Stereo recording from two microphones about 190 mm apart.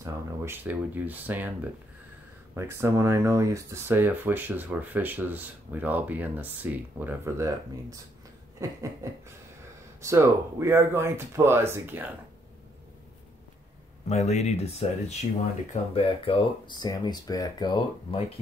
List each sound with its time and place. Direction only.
0.0 s speech: 15° right (ahead or behind)
14.0 s speech: 35° left (ahead or behind)